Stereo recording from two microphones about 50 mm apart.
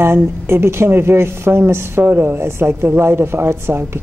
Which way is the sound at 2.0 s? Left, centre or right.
Right.